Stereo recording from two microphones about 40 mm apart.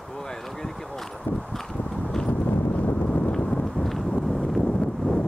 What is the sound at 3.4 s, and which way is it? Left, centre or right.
Horse, left.